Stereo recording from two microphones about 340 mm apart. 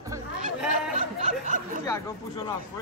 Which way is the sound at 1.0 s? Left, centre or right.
Right.